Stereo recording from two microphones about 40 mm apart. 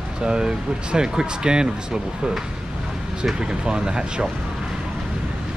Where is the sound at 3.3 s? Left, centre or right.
Centre.